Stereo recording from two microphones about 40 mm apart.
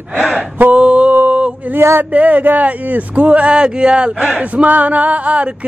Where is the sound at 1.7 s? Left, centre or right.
Right.